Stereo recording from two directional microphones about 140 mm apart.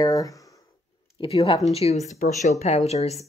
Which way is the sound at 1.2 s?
40° left (ahead or behind).